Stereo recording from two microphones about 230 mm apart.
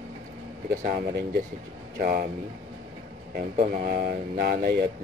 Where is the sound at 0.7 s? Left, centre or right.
Right.